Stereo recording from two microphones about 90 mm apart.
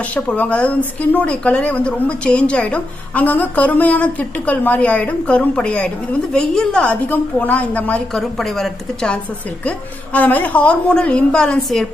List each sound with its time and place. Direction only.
0.1 s a woman's voice: 15° left (ahead or behind)
8.1 s a woman's voice: centre (ahead or behind)
9.7 s a woman's voice: 20° left (ahead or behind)